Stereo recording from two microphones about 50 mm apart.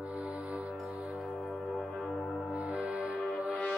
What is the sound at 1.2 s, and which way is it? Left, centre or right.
Music, centre.